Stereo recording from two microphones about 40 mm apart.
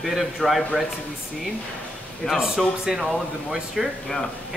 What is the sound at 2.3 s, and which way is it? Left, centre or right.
Speech, centre.